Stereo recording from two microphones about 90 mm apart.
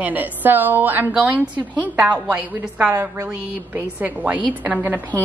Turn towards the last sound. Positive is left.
turn(degrees=-20)  # may be behind; listen again after turning